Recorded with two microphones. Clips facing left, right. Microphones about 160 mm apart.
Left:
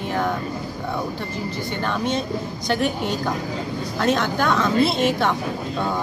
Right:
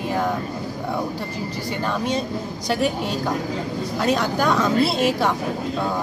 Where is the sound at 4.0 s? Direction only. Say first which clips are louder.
Even; 10° right (ahead or behind).